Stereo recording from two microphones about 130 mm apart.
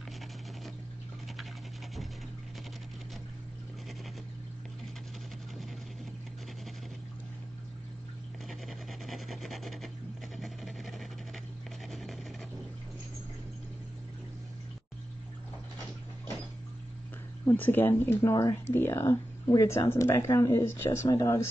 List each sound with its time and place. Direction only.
8.5 s rub: centre (ahead or behind)
10.3 s a sound: centre (ahead or behind)
17.5 s speech: 15° left (ahead or behind)
18.3 s speech: 30° left (ahead or behind)
18.7 s speech: 20° left (ahead or behind)
21.1 s speech: 30° left (ahead or behind)